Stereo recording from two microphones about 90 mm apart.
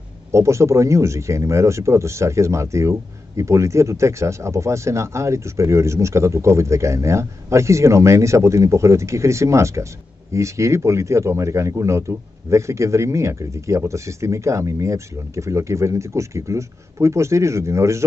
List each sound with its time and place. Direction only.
0.3 s speech: 35° right (ahead or behind)